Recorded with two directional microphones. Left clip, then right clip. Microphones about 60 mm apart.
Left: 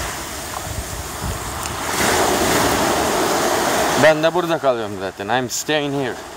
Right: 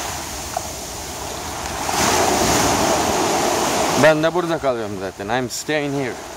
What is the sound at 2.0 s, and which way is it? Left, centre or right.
Waves, right.